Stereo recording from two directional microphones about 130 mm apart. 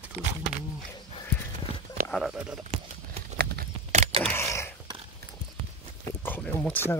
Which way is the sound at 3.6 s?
65° right (ahead or behind).